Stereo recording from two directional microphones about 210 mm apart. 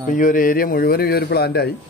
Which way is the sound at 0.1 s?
40° left (ahead or behind).